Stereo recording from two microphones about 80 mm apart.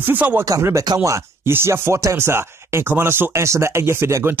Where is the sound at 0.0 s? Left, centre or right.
Right.